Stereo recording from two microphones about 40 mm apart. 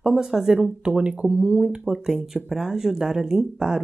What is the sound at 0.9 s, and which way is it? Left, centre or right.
Speech, right.